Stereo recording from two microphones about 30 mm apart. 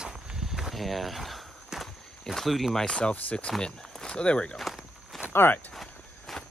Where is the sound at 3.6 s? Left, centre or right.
Left.